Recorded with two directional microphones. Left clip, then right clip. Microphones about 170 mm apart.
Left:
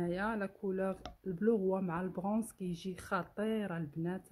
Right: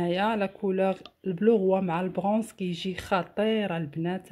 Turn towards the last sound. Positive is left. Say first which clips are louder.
# right 9 dB
turn(degrees=-5)  # may be behind; listen again after turning